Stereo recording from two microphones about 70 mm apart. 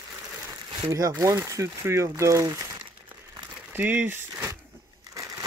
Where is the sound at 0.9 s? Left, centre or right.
Right.